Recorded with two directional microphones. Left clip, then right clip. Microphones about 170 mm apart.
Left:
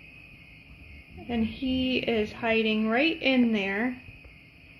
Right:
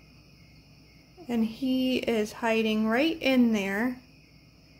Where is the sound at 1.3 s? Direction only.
15° right (ahead or behind).